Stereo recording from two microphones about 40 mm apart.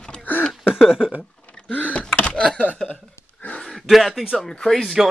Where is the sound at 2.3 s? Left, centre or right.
Centre.